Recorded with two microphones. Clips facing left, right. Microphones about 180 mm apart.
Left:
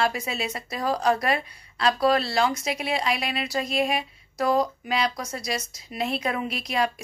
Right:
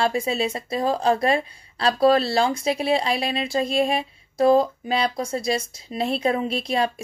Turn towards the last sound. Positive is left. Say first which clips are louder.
# right 3 dB
turn(degrees=-30)  # may be behind; listen again after turning